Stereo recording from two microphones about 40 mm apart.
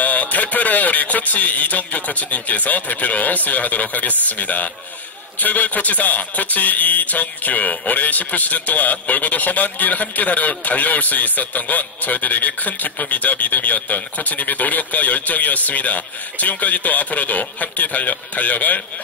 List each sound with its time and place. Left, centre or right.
0.0 s speech: left